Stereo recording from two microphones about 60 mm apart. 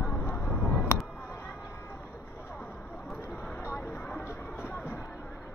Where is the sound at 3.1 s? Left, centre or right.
Left.